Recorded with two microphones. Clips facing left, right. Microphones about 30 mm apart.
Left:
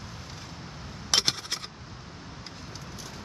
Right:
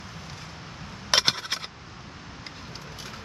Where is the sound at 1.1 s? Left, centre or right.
Right.